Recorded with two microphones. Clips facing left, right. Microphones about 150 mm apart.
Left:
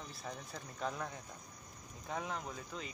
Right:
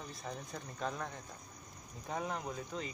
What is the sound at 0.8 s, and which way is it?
Speech, 5° left (ahead or behind).